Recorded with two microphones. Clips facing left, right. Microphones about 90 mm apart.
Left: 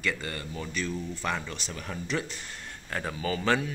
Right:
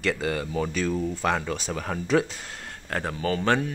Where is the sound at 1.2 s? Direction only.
75° right (ahead or behind).